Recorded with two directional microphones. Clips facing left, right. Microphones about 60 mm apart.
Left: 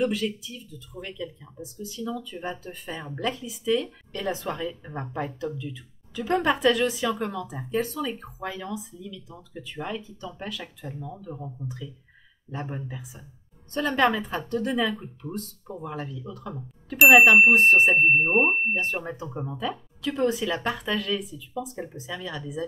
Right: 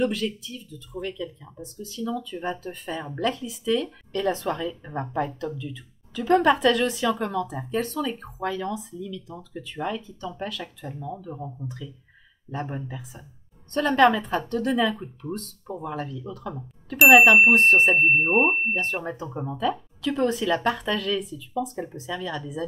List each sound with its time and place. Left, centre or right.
0.0 s a woman's voice: centre
11.6 s a woman's voice: centre
12.6 s speech: centre
12.9 s a woman's voice: centre
15.2 s speech: right
15.8 s a woman's voice: centre
19.2 s speech: centre
20.0 s a woman's voice: centre